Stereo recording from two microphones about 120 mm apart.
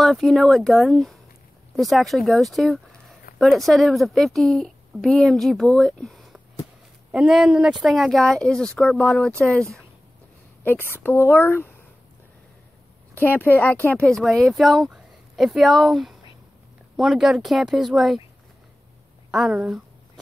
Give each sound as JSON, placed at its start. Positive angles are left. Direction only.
{"t": 0.0, "sound": "speech", "side_deg": 5}
{"t": 10.6, "sound": "speech", "side_deg": 15}
{"t": 13.1, "sound": "speech", "side_deg": 15}
{"t": 19.3, "sound": "speech", "side_deg": -5}